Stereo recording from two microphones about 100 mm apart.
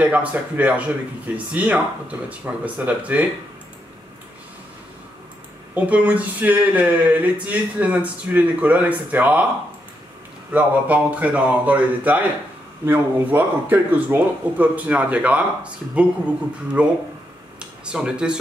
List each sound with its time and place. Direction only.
0.0 s speech: 15° right (ahead or behind)
5.8 s speech: 15° right (ahead or behind)
10.5 s speech: 15° right (ahead or behind)